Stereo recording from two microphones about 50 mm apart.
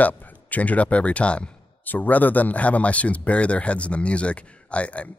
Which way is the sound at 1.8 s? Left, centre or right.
Left.